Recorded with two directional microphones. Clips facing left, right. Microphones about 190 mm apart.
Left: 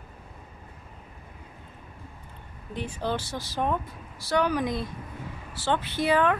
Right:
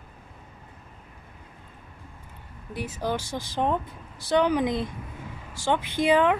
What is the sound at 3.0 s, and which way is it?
Speech, 10° right (ahead or behind).